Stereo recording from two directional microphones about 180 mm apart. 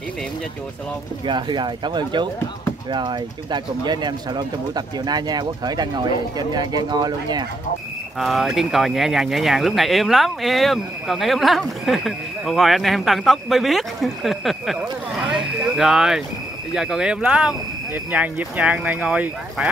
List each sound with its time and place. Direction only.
1.2 s speech: 25° right (ahead or behind)
8.2 s speech: centre (ahead or behind)
15.2 s a sound: 5° right (ahead or behind)
16.7 s speech: 5° right (ahead or behind)